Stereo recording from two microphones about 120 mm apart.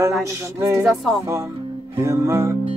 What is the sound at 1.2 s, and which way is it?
Music, 25° right (ahead or behind).